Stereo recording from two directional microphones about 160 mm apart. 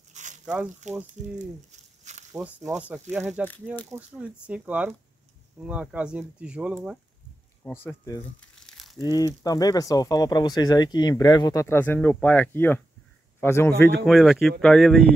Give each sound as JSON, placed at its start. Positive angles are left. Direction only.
{"t": 0.1, "sound": "a sound", "side_deg": -50}
{"t": 0.8, "sound": "speech", "side_deg": -50}
{"t": 1.4, "sound": "a sound", "side_deg": -45}
{"t": 2.3, "sound": "speech", "side_deg": -5}
{"t": 7.6, "sound": "a man's voice", "side_deg": 15}
{"t": 8.4, "sound": "crumpling", "side_deg": 5}
{"t": 9.0, "sound": "a man's voice", "side_deg": 25}
{"t": 14.0, "sound": "speech", "side_deg": 0}